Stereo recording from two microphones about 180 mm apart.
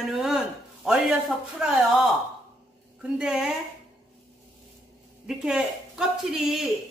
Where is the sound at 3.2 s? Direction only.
5° right (ahead or behind).